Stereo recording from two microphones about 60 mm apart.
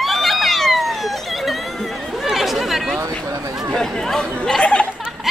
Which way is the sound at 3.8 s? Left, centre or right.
Centre.